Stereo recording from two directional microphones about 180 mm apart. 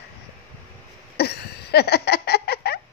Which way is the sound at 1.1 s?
65° left (ahead or behind).